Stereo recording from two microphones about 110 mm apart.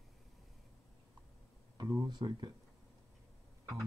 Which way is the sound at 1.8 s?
40° right (ahead or behind).